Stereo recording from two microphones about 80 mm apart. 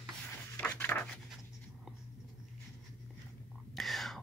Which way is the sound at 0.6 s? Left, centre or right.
Left.